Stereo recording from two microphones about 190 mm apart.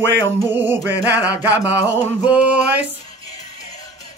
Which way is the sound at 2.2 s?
5° right (ahead or behind).